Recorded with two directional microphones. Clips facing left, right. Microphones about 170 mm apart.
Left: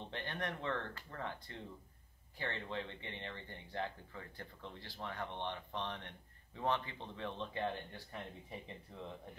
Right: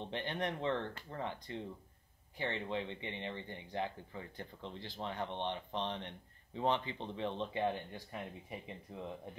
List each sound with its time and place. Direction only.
0.0 s speech: 20° right (ahead or behind)